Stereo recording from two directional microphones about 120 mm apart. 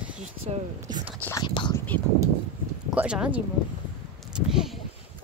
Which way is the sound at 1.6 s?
40° left (ahead or behind).